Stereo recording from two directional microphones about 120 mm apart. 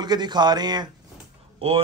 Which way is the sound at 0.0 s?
35° right (ahead or behind).